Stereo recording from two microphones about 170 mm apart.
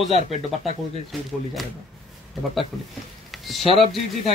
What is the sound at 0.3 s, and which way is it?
Speech, 40° left (ahead or behind).